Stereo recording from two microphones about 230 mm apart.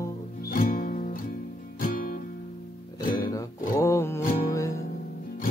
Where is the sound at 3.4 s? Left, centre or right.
Centre.